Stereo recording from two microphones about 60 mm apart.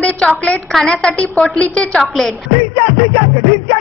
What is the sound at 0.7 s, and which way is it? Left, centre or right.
Speech, centre.